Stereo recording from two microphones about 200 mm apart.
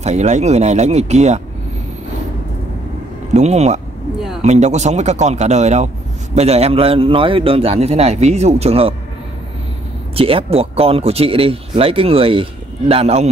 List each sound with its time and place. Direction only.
0.0 s a man's voice: 35° right (ahead or behind)
3.3 s a man's voice: 35° right (ahead or behind)
10.1 s speech: 30° right (ahead or behind)